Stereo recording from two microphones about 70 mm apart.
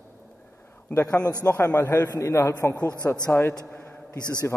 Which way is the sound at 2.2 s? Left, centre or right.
Left.